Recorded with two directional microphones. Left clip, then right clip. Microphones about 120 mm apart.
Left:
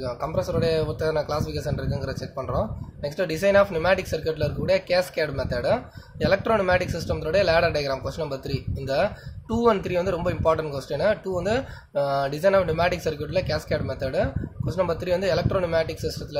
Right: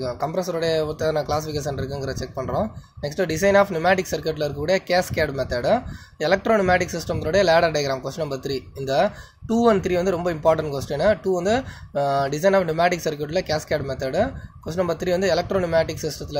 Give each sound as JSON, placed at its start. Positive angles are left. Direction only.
{"t": 0.0, "sound": "speech", "side_deg": -35}